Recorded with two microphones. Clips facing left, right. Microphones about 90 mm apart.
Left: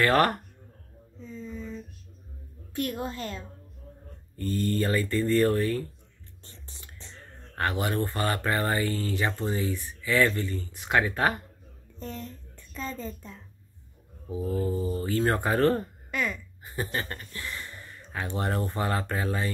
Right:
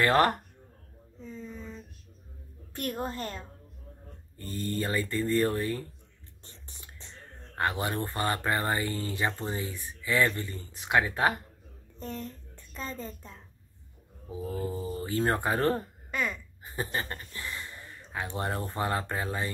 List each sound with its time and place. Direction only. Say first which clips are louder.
0.0 s speech: left 1 dB; 20° right (ahead or behind)
2.7 s a child's voice: left 2 dB; 40° right (ahead or behind)
4.4 s speech: left 5 dB; 20° right (ahead or behind)
7.5 s speech: left 2 dB; 20° right (ahead or behind)
12.0 s a sound: even; 35° right (ahead or behind)
14.5 s speech: left 5 dB; 20° right (ahead or behind)
16.1 s a sound: left 1 dB; 30° right (ahead or behind)
17.1 s speech: left 1 dB; 20° right (ahead or behind)